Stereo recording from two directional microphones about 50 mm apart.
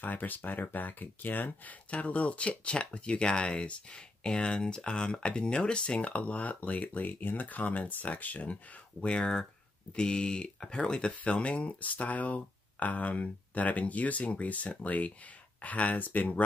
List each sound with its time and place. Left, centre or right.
0.0 s speech: left
1.9 s speech: left
9.0 s speech: centre; by 16.4 s left